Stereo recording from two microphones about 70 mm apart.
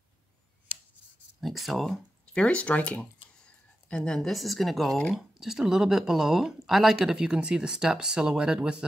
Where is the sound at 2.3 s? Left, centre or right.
Centre.